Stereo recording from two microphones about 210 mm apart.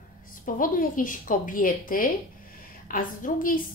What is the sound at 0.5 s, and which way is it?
A woman's voice, 40° left (ahead or behind).